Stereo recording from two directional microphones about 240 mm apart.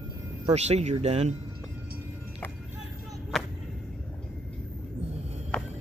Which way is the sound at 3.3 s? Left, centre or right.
Centre.